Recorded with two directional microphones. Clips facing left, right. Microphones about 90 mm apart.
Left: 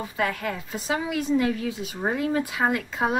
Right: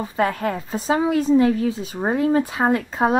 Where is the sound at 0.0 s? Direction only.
35° right (ahead or behind).